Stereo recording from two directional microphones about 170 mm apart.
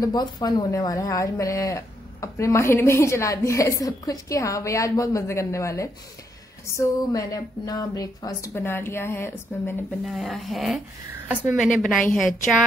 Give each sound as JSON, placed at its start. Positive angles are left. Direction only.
{"t": 0.0, "sound": "a woman's voice", "side_deg": 25}
{"t": 10.0, "sound": "a woman's voice", "side_deg": 0}